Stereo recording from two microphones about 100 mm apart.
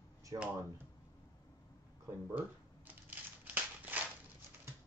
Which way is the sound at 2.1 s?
15° right (ahead or behind).